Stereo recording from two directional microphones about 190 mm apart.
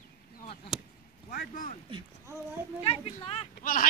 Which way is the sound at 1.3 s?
45° left (ahead or behind).